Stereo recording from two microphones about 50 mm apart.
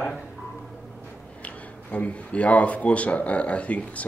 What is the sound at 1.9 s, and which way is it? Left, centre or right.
Speech, left.